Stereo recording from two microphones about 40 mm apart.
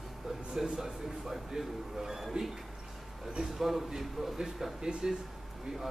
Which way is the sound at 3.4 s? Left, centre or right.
Centre.